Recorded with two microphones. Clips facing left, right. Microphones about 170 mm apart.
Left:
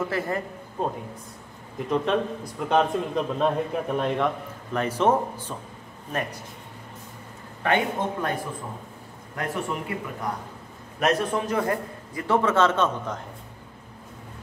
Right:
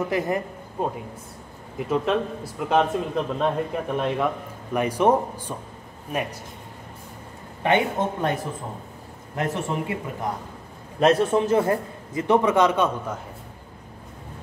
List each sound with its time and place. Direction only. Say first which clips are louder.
0.1 s a man's voice: right 3 dB; 15° right (ahead or behind)
1.8 s a man's voice: right 1 dB; 5° right (ahead or behind)
4.7 s speech: right 2 dB; 15° right (ahead or behind)
7.6 s a man's voice: right 3 dB; 20° right (ahead or behind)
11.0 s a man's voice: right 5 dB; 30° right (ahead or behind); by 13.2 s 10° right (ahead or behind)